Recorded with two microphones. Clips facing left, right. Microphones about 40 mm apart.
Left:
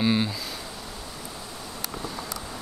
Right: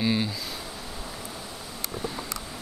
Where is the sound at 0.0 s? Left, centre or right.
Centre.